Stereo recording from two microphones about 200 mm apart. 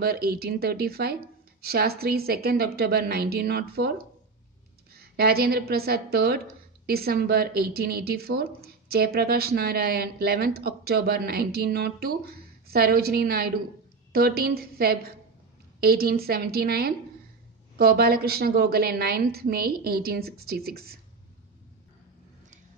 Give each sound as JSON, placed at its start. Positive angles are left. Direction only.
{"t": 0.0, "sound": "a woman's voice", "side_deg": -50}
{"t": 4.9, "sound": "a woman's voice", "side_deg": -50}